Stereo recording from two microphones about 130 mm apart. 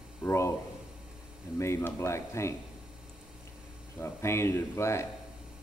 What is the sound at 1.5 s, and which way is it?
Speech, 20° left (ahead or behind).